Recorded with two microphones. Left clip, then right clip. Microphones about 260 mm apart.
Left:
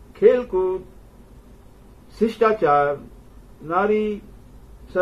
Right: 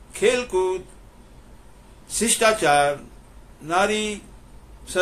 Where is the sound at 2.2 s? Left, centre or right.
Right.